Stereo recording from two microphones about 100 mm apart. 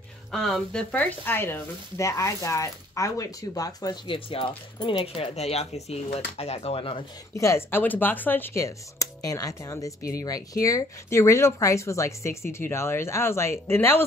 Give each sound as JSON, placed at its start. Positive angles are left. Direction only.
{"t": 0.3, "sound": "speech", "side_deg": 5}
{"t": 1.2, "sound": "speech", "side_deg": 20}
{"t": 4.1, "sound": "speech", "side_deg": 60}
{"t": 5.0, "sound": "speech", "side_deg": 80}
{"t": 7.3, "sound": "speech", "side_deg": 30}